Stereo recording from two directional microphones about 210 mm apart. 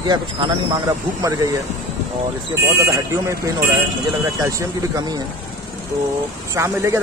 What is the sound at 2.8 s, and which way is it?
Speech, 15° right (ahead or behind).